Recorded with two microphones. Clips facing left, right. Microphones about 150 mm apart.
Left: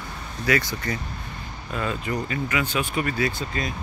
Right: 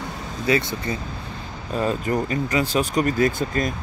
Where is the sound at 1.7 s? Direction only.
40° right (ahead or behind).